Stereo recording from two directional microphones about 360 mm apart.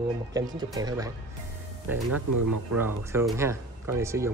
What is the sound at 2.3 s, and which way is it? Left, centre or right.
Speech, right.